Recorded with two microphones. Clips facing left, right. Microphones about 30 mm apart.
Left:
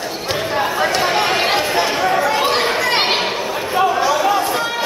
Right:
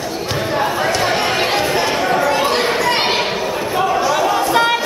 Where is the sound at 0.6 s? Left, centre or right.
Centre.